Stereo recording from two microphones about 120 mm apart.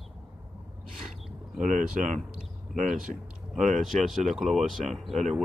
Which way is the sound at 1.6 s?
90° right.